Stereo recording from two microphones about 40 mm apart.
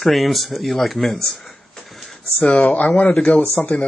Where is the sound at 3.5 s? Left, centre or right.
Left.